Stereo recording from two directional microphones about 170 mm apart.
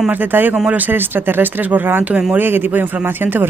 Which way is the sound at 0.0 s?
10° right (ahead or behind).